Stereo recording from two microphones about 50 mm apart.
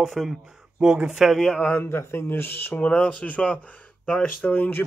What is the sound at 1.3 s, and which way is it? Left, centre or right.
Speech, centre.